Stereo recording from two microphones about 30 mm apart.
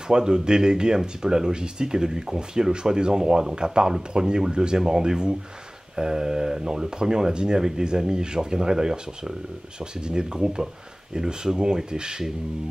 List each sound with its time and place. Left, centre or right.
0.1 s speech: right